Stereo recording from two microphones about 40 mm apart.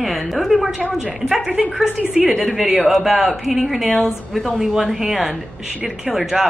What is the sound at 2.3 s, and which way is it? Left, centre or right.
Speech, centre.